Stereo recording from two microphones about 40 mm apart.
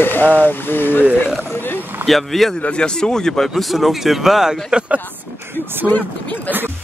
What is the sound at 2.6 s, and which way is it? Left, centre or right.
Speech, left.